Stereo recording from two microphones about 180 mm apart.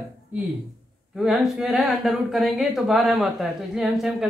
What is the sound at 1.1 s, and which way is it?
A woman's voice, centre (ahead or behind).